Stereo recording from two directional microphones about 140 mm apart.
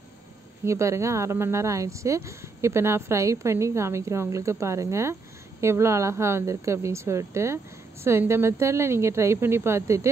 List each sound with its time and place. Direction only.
0.7 s speech: 20° right (ahead or behind)